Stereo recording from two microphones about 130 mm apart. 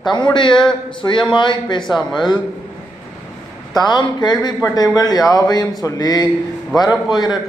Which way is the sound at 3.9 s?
35° left (ahead or behind).